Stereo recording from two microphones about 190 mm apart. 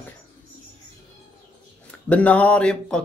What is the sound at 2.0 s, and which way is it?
Speech, 5° left (ahead or behind).